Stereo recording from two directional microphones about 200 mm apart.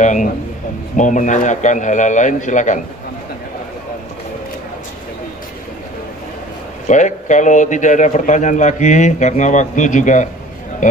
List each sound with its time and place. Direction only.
0.0 s a man's voice: 35° left (ahead or behind)
6.9 s a man's voice: 35° left (ahead or behind)